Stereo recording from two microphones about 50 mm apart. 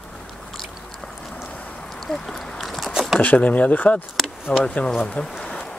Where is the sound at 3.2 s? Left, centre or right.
Left.